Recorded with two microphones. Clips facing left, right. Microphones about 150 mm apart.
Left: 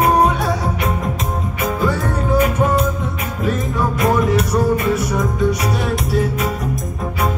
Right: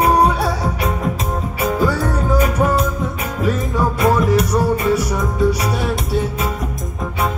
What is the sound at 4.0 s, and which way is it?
Music, 30° right (ahead or behind).